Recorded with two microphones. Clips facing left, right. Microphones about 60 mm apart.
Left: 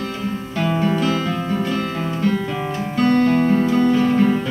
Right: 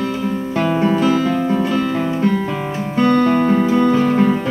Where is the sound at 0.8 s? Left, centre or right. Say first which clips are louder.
Right 5 dB; right.